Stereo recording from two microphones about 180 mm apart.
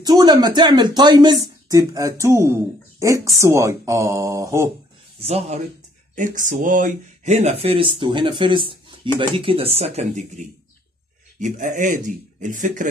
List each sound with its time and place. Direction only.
0.0 s speech: 20° right (ahead or behind)
5.2 s speech: 35° right (ahead or behind)
6.1 s speech: 45° right (ahead or behind)